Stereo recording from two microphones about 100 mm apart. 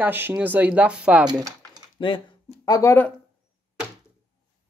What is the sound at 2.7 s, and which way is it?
Speech, 30° left (ahead or behind).